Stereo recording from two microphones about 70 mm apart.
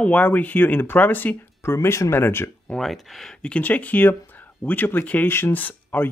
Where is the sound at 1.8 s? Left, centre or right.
Left.